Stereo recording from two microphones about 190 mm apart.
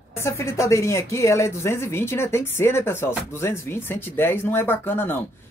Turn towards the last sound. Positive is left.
turn(degrees=10)  # may be behind; listen again after turning